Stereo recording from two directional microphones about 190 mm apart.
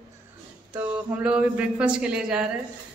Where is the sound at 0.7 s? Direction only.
10° right (ahead or behind).